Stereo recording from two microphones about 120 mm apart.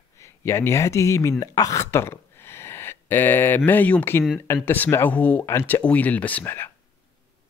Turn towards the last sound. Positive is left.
turn(degrees=15)  # may be behind; listen again after turning